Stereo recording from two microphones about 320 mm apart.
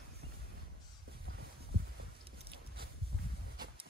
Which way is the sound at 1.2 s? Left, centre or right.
Right.